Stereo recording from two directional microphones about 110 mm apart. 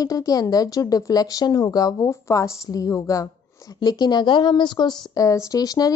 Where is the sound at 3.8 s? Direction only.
40° left (ahead or behind).